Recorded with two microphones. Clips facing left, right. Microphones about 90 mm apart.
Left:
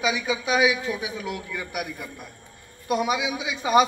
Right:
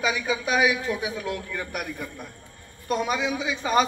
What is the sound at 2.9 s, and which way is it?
Speech, 10° left (ahead or behind).